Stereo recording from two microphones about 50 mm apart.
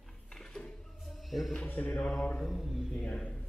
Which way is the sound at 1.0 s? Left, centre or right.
Centre.